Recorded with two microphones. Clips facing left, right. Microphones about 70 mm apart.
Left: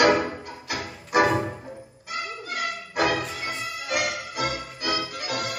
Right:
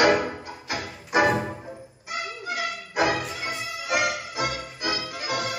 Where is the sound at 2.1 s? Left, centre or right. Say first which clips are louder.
Right 1 dB; centre.